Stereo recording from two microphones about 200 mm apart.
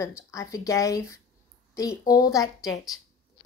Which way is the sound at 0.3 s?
15° left (ahead or behind).